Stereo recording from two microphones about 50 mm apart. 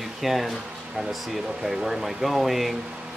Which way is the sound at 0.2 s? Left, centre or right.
Centre.